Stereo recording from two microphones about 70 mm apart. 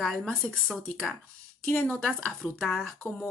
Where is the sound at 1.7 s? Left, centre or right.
Left.